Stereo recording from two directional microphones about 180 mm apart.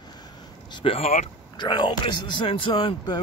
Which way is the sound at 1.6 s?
25° left (ahead or behind).